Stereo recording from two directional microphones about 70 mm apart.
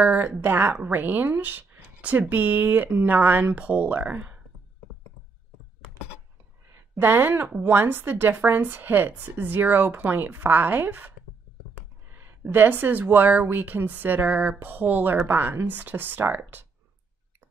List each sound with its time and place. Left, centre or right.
0.0 s a woman's voice: right
6.7 s a sound: right
7.6 s a woman's voice: right